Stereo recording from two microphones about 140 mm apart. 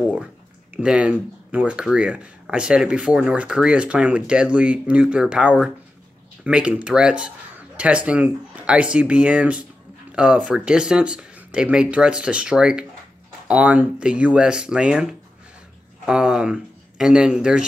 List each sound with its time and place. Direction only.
0.7 s speech: 10° right (ahead or behind)